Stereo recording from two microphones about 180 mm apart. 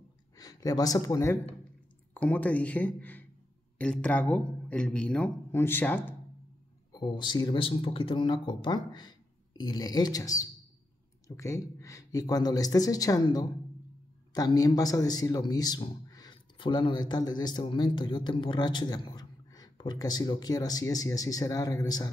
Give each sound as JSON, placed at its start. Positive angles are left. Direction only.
{"t": 0.4, "sound": "speech", "side_deg": 20}
{"t": 6.9, "sound": "a man's voice", "side_deg": 25}